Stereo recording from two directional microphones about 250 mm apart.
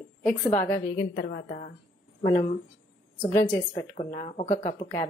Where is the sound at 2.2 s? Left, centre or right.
Left.